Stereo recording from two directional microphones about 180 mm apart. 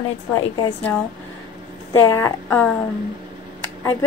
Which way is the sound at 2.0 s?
15° left (ahead or behind).